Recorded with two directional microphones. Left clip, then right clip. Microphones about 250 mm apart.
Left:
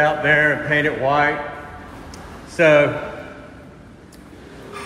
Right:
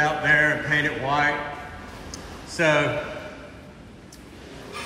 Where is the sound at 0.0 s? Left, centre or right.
Centre.